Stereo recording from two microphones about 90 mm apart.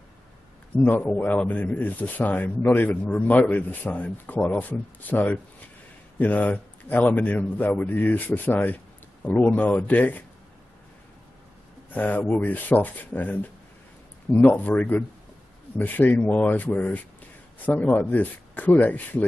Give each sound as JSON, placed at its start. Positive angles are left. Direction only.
{"t": 0.8, "sound": "a man's voice", "side_deg": 20}
{"t": 11.9, "sound": "a man's voice", "side_deg": 20}